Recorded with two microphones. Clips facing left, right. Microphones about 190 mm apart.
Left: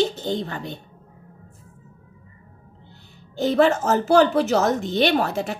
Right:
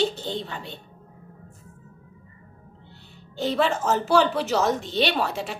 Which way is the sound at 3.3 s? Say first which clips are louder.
Left 6 dB; 45° left (ahead or behind).